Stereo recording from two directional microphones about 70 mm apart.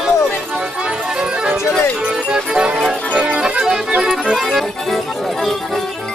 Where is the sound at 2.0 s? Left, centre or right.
Centre.